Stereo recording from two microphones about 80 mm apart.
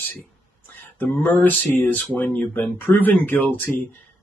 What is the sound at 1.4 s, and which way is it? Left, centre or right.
Speech, left.